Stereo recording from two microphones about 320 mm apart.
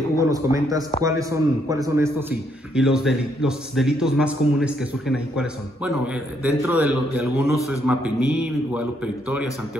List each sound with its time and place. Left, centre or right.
0.2 s a man's voice: centre